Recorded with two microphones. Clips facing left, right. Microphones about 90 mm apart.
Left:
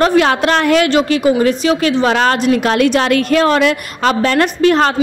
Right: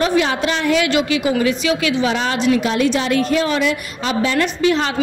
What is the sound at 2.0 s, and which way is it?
A woman's voice, 60° left (ahead or behind).